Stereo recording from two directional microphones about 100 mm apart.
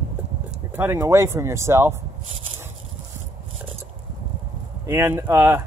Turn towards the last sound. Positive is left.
turn(degrees=-25)  # may be behind; listen again after turning